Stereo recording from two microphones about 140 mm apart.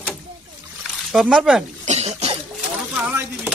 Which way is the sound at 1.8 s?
50° right (ahead or behind).